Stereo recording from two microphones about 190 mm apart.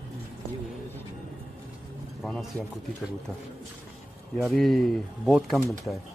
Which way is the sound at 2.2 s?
Centre (ahead or behind).